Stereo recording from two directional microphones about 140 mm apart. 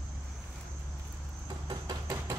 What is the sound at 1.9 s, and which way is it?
Hammer, 30° right (ahead or behind).